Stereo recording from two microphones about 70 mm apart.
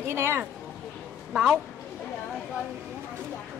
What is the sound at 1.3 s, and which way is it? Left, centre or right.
Speech, centre.